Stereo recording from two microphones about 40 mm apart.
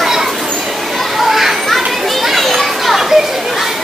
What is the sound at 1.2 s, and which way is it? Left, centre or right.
Children playing, centre.